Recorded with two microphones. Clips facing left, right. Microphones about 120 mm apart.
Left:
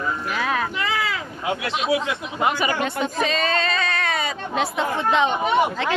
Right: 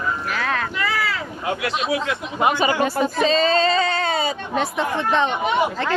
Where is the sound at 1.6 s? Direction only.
25° left (ahead or behind).